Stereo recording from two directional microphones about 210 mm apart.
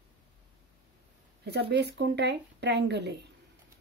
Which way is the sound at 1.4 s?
50° right (ahead or behind).